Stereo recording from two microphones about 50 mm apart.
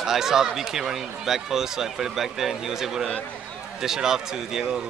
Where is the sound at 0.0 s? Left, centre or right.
Centre.